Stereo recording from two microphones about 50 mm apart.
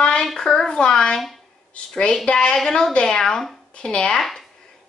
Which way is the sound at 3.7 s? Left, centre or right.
Left.